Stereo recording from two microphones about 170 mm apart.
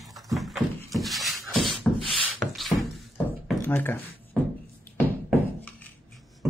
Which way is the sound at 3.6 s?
10° left (ahead or behind).